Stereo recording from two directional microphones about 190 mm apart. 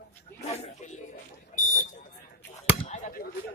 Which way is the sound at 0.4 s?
35° left (ahead or behind).